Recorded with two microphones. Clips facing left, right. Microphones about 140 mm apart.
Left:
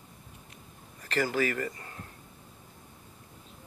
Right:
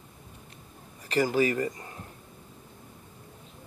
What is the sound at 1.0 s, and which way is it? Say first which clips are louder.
Speech: right 4 dB; 15° right (ahead or behind).